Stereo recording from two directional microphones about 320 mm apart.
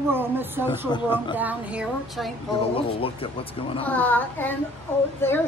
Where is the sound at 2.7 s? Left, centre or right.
Centre.